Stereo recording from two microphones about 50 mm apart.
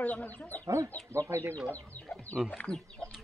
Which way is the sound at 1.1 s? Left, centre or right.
Right.